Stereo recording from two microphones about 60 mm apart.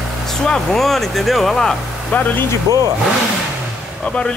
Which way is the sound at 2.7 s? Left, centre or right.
Right.